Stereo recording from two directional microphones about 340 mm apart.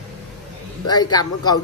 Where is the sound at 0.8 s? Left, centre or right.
Centre.